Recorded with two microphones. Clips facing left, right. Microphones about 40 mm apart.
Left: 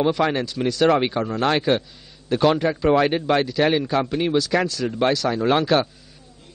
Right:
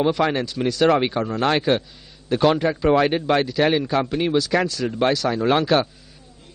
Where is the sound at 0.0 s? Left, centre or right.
Centre.